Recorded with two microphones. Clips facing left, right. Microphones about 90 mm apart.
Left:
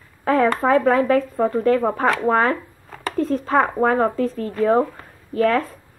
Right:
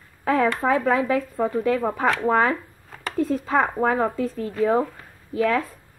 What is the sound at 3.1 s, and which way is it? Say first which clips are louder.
Speech: left 2 dB; 10° right (ahead or behind).